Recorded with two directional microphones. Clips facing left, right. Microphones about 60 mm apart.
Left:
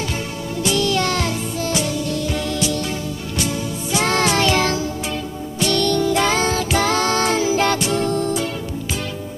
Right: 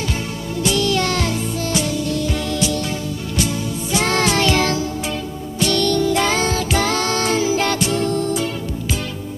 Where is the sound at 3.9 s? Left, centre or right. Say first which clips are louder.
Even; centre.